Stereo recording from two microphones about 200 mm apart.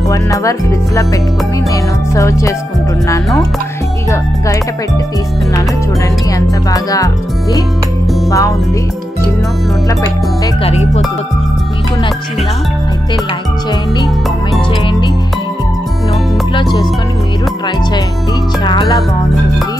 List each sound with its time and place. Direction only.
0.1 s music: 15° left (ahead or behind)
2.1 s music: 15° left (ahead or behind)
6.3 s music: 15° left (ahead or behind)
8.3 s music: 15° left (ahead or behind)
10.6 s speech: 30° left (ahead or behind)
18.6 s music: 20° left (ahead or behind)